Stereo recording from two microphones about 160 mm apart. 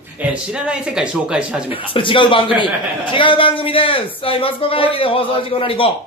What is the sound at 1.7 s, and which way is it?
Speech, 35° left (ahead or behind).